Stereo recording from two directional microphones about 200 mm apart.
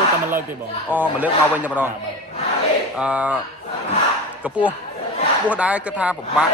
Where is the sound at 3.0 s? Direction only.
5° right (ahead or behind).